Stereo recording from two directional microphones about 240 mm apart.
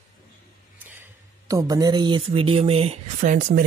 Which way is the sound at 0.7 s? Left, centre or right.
Centre.